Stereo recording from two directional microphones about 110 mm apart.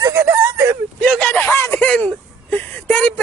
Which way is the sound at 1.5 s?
25° left (ahead or behind).